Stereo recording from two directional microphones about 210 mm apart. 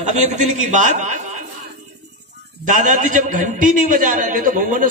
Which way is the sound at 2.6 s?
35° right (ahead or behind).